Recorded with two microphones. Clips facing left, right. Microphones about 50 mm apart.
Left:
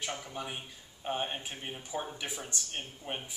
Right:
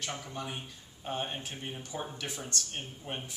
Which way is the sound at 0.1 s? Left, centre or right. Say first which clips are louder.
Even; centre.